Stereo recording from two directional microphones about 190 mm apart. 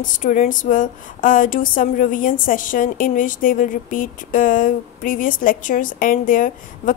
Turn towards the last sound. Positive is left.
turn(degrees=45)  # may be behind; listen again after turning